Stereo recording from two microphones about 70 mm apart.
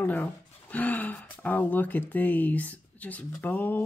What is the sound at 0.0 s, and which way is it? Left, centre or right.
Speech, left.